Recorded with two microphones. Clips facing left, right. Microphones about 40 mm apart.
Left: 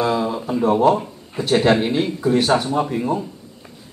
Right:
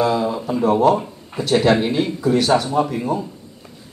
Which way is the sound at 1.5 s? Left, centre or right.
Centre.